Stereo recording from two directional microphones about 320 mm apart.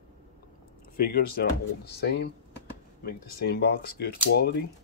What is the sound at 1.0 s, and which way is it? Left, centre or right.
Speech, left.